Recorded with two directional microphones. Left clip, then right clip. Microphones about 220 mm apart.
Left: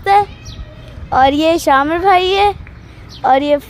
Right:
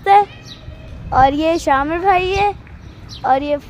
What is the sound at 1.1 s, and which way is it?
A woman's voice, 10° left (ahead or behind).